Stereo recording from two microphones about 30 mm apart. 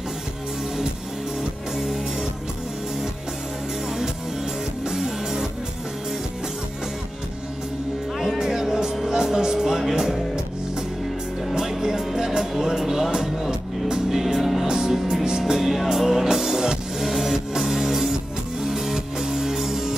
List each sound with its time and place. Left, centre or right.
1.4 s music: centre
4.8 s music: centre
8.4 s music: centre
11.5 s music: centre
14.0 s music: centre
15.2 s music: right
15.6 s music: centre